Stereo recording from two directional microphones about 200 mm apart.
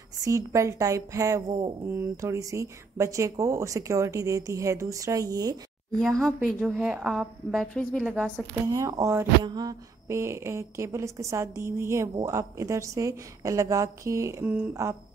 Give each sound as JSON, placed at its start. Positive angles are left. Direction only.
{"t": 0.2, "sound": "a woman's voice", "side_deg": -15}
{"t": 5.9, "sound": "a woman's voice", "side_deg": 0}
{"t": 8.6, "sound": "a woman's voice", "side_deg": -15}